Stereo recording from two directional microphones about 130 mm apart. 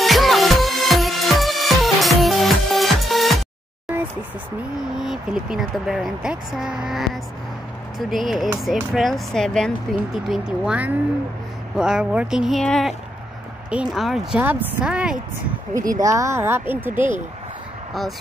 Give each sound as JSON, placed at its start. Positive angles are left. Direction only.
{"t": 0.0, "sound": "music", "side_deg": 0}
{"t": 4.9, "sound": "speech", "side_deg": -5}
{"t": 8.1, "sound": "speech", "side_deg": 0}
{"t": 15.7, "sound": "speech", "side_deg": -25}